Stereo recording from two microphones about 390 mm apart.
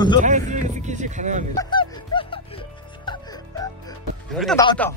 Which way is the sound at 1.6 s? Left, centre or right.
Centre.